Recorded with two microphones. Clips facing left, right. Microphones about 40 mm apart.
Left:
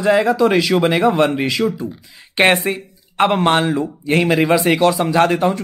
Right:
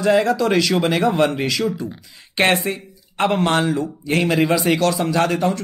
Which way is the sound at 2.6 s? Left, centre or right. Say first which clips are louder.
Left 3 dB; centre.